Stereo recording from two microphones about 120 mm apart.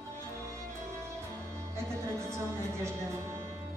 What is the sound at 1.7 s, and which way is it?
Music, 20° right (ahead or behind).